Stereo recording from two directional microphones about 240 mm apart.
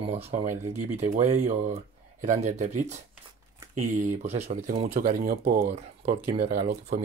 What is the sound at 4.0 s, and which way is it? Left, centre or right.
Speech, right.